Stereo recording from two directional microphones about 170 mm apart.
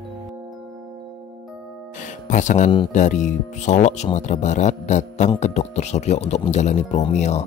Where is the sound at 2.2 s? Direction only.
45° left (ahead or behind).